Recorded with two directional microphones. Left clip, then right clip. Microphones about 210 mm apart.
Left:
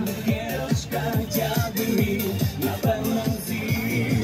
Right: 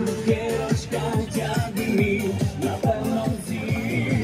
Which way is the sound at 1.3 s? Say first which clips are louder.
Left 1 dB; 10° left (ahead or behind).